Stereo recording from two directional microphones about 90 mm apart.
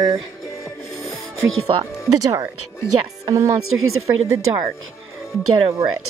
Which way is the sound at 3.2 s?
40° right (ahead or behind).